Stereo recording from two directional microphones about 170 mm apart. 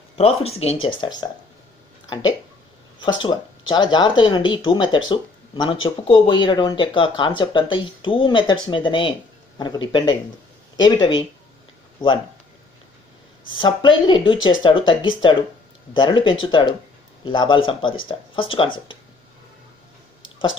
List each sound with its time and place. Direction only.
0.2 s speech: 35° left (ahead or behind)
3.0 s speech: 25° left (ahead or behind)
13.6 s speech: 25° left (ahead or behind)